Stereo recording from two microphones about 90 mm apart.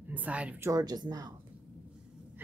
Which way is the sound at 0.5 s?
30° right (ahead or behind).